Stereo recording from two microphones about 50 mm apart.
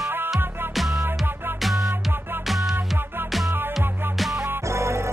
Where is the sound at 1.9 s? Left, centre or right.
Right.